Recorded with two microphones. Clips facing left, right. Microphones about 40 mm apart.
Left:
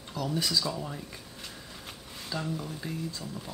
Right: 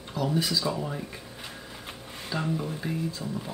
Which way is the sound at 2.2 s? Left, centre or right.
Right.